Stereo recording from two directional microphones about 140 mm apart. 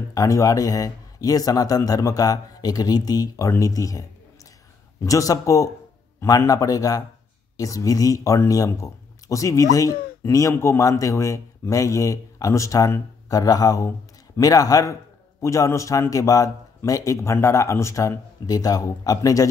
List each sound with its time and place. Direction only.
0.1 s a man's voice: 25° left (ahead or behind)
5.0 s a man's voice: 25° left (ahead or behind)